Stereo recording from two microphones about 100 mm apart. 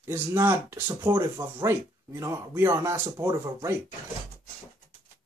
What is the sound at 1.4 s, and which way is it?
Speech, 30° right (ahead or behind).